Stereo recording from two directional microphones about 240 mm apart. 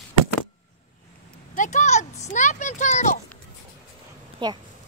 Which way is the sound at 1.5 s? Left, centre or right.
Left.